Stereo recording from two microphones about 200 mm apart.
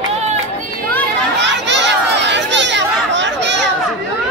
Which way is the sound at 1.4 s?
60° right (ahead or behind).